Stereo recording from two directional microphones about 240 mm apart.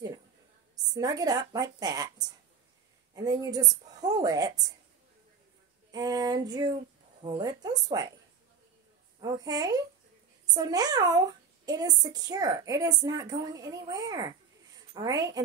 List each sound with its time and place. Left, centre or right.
0.9 s a woman's voice: centre
5.9 s a woman's voice: centre
9.2 s a woman's voice: centre